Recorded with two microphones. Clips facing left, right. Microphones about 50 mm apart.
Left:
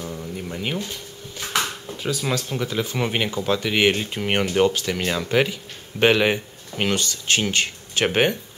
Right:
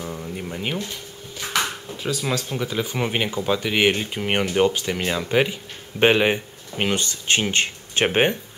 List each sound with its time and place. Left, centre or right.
0.0 s a sound: centre
0.5 s speech: centre
1.9 s speech: centre
5.5 s speech: right
7.0 s speech: right